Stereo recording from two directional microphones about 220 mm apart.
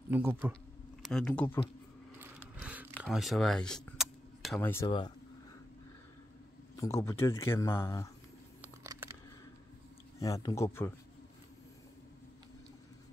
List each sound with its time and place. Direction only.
0.1 s speech: 10° right (ahead or behind)
1.0 s speech: 5° left (ahead or behind)
2.5 s a sound: 5° right (ahead or behind)
4.6 s speech: 10° left (ahead or behind)
4.8 s speech: 20° left (ahead or behind)
6.8 s speech: 15° left (ahead or behind)
10.2 s speech: 15° left (ahead or behind)